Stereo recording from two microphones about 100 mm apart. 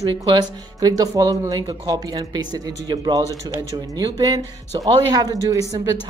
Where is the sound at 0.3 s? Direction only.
45° right (ahead or behind).